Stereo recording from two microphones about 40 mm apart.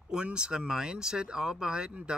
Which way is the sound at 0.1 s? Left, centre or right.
Right.